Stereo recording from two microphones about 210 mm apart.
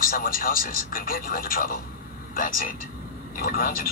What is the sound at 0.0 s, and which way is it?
Speech, 45° left (ahead or behind).